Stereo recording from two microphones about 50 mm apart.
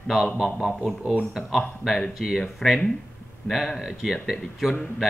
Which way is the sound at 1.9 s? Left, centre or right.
Centre.